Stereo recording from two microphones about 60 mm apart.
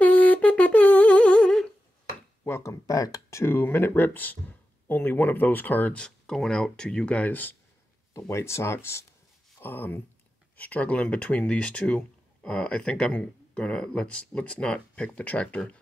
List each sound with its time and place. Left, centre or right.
0.0 s humming: left
2.6 s speech: left
3.3 s speech: left
3.5 s speech: left
5.9 s speech: centre; by 7.5 s left
8.1 s speech: left
9.6 s speech: left
10.6 s speech: left